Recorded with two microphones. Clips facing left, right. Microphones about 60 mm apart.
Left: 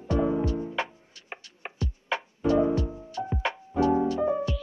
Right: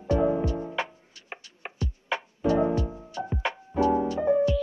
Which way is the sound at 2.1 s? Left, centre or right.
Right.